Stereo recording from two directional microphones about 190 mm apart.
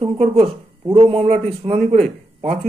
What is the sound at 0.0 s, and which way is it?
Speech, 30° right (ahead or behind).